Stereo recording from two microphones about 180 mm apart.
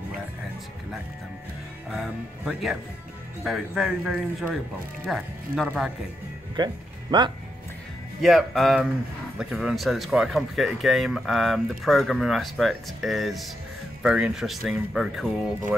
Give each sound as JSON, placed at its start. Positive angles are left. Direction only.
{"t": 1.9, "sound": "speech", "side_deg": 0}
{"t": 6.5, "sound": "speech", "side_deg": -25}
{"t": 8.2, "sound": "speech", "side_deg": 0}